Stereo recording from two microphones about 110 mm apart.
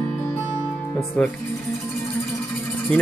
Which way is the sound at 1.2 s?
10° left (ahead or behind).